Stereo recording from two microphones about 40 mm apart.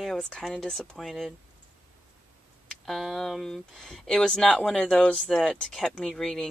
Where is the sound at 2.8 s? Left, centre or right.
Centre.